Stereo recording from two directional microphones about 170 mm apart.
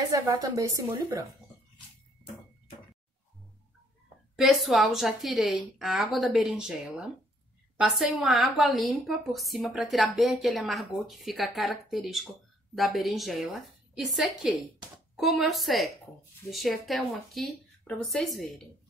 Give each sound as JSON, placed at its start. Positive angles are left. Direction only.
{"t": 0.1, "sound": "a woman's voice", "side_deg": -20}
{"t": 4.4, "sound": "a woman's voice", "side_deg": 0}
{"t": 7.7, "sound": "a woman's voice", "side_deg": -5}